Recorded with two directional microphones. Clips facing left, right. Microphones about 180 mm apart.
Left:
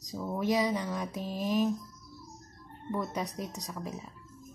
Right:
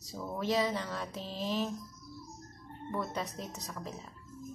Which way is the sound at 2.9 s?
15° left (ahead or behind).